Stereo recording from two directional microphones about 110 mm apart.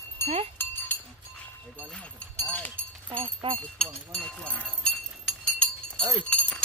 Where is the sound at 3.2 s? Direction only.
55° right (ahead or behind).